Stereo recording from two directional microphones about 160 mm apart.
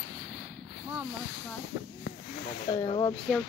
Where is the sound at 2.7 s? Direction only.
25° left (ahead or behind).